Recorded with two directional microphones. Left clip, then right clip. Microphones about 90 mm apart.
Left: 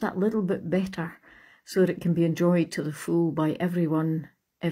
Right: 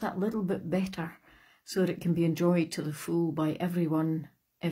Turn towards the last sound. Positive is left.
turn(degrees=35)  # may be behind; listen again after turning